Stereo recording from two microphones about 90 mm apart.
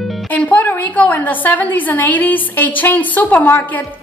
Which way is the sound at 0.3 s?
15° left (ahead or behind).